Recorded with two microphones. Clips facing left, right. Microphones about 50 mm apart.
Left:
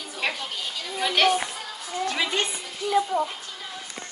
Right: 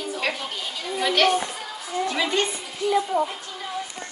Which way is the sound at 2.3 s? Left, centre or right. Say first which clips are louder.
Right 3 dB; centre.